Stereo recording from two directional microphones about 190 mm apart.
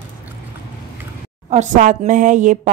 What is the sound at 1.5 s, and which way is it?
Speech, 40° right (ahead or behind).